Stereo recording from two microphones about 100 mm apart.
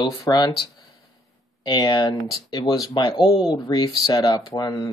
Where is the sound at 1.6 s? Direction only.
50° left (ahead or behind).